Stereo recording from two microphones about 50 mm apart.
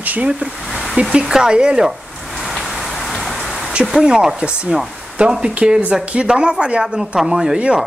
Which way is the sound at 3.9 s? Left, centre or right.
Centre.